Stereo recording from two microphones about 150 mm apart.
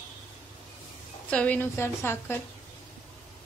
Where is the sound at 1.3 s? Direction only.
10° left (ahead or behind).